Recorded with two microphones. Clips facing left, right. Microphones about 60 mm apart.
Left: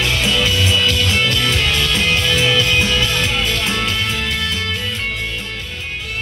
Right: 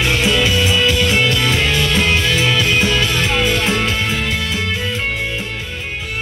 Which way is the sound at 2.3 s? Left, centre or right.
Centre.